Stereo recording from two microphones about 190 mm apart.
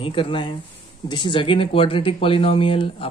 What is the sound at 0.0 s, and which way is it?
Speech, 30° left (ahead or behind).